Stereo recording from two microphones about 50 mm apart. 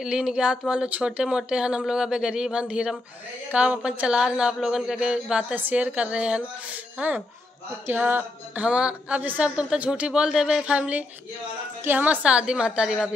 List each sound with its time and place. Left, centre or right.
0.0 s speech: centre
5.6 s speech: right
7.0 s a sound: right
8.6 s speech: right
10.6 s speech: right
11.8 s a sound: right
12.3 s speech: centre